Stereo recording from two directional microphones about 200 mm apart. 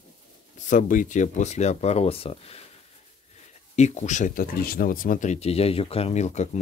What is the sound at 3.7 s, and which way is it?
Speech, 35° left (ahead or behind).